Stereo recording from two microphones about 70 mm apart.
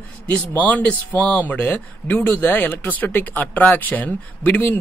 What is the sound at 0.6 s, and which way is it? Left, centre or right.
Speech, left.